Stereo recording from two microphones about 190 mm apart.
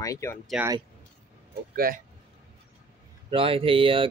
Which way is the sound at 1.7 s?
50° right (ahead or behind).